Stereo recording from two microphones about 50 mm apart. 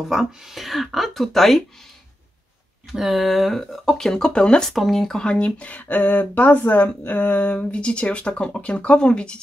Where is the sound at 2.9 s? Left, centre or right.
Centre.